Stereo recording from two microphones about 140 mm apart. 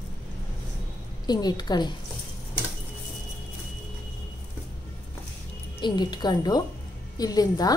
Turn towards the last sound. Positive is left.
turn(degrees=25)  # may be behind; listen again after turning